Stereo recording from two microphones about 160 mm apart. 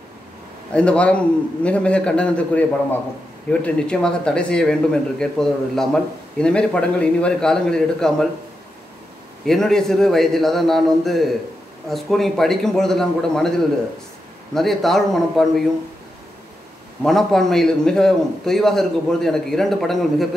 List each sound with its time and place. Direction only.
0.7 s a man's voice: 5° left (ahead or behind)
9.5 s a man's voice: 5° left (ahead or behind)
17.0 s a man's voice: centre (ahead or behind)